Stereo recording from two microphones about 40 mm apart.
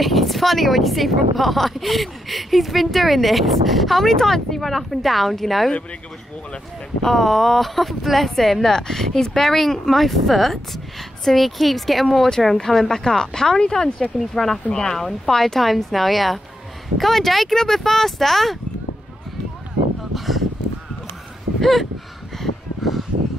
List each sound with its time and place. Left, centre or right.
0.0 s a woman's voice: centre
7.0 s a woman's voice: centre
12.3 s speech: centre
14.1 s speech: centre
14.7 s speech: centre
15.0 s a woman's voice: centre
21.5 s speech: centre
22.4 s a sound: centre